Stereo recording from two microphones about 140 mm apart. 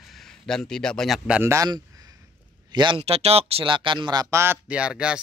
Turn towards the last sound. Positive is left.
turn(degrees=-5)  # may be behind; listen again after turning